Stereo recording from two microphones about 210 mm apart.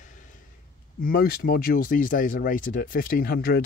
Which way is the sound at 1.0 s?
45° left (ahead or behind).